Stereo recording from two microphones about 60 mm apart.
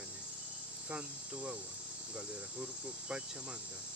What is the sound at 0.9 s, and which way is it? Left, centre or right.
Speech, right.